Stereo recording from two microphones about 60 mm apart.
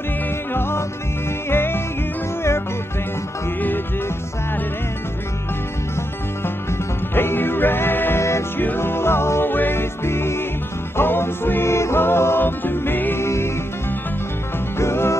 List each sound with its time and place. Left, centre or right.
0.5 s music: left
7.2 s music: left
8.2 s music: left
8.5 s music: left
13.2 s music: left
14.8 s music: left